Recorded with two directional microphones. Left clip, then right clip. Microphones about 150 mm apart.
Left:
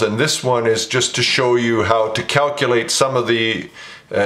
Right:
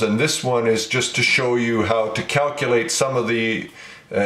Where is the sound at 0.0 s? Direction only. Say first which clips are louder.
Left 3 dB; 30° left (ahead or behind).